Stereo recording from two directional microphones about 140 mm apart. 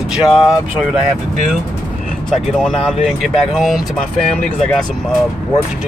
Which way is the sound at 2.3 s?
5° left (ahead or behind).